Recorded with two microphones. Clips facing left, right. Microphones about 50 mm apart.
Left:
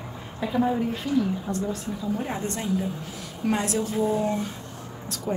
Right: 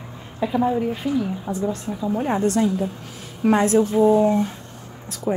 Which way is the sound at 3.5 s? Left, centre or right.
Right.